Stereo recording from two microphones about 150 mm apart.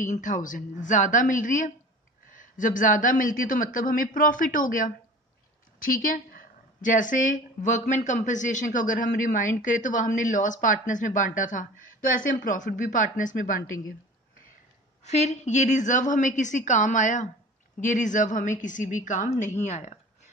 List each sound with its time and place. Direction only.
0.0 s a woman's voice: 55° left (ahead or behind)
15.0 s a woman's voice: 50° left (ahead or behind)